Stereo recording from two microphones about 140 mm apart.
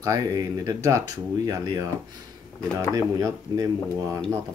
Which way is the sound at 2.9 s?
25° right (ahead or behind).